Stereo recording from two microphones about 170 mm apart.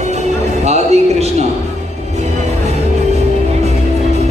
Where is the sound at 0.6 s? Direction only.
40° right (ahead or behind).